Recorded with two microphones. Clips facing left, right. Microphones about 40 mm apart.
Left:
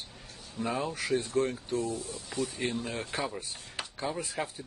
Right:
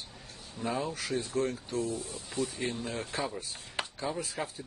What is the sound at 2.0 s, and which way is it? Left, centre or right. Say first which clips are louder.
Speech: left 1 dB; right.